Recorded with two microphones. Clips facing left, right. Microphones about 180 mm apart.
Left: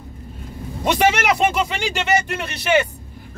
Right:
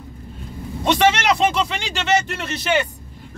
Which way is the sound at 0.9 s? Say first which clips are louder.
Right 1 dB; 10° left (ahead or behind).